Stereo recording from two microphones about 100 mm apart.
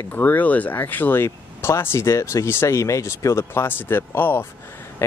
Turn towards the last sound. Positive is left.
turn(degrees=20)  # may be behind; listen again after turning